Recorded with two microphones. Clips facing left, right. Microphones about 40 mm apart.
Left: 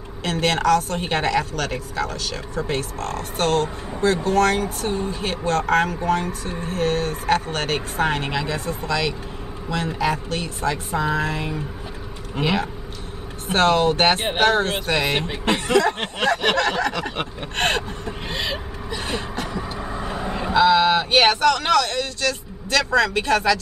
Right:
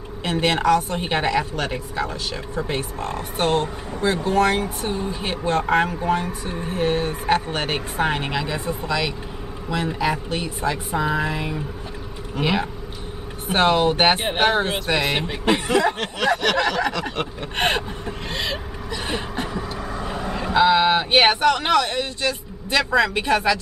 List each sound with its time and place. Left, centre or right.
0.2 s a woman's voice: centre
17.6 s a woman's voice: centre
18.3 s vehicle: centre
19.0 s a sound: centre
19.8 s vehicle: centre
20.5 s a woman's voice: centre